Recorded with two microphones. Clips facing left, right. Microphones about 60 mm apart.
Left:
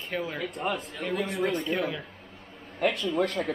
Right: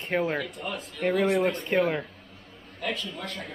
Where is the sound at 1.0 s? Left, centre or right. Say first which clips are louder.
Right 6 dB; right.